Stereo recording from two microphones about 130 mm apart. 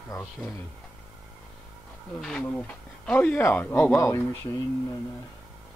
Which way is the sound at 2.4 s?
10° left (ahead or behind).